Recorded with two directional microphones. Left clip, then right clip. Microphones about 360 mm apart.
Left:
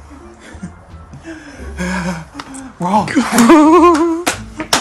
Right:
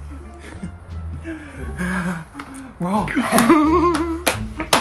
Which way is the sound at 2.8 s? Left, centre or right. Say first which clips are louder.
Left 7 dB; centre.